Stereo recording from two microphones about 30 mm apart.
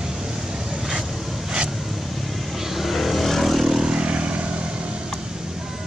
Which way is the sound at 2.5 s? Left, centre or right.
Centre.